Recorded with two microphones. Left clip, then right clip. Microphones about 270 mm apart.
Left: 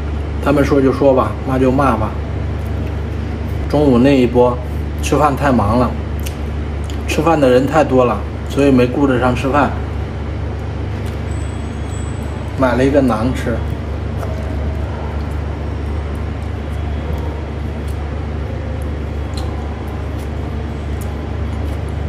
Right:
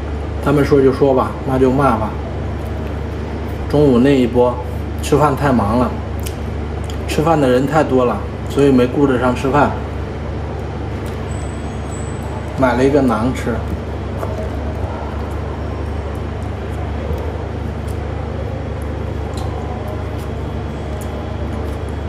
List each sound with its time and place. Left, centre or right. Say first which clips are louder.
0.5 s speech: right 1 dB; centre
3.7 s speech: even; centre
7.1 s speech: left 2 dB; centre
12.5 s speech: even; centre